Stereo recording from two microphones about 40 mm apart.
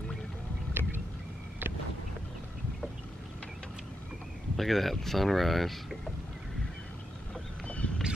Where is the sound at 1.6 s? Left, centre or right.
Right.